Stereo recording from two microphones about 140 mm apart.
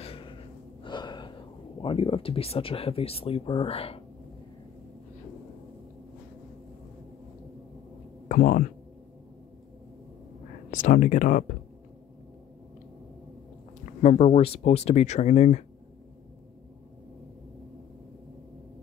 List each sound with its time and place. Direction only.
0.0 s gasp: 40° left (ahead or behind)
1.8 s speech: 40° left (ahead or behind)
8.3 s speech: 70° left (ahead or behind)
10.7 s speech: 70° left (ahead or behind)
14.0 s speech: 50° left (ahead or behind)